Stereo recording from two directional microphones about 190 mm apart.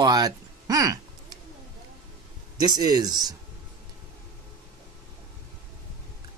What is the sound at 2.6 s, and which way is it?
Speech, 20° right (ahead or behind).